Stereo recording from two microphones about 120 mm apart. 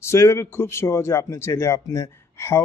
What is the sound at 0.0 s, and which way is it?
A man's voice, 20° left (ahead or behind).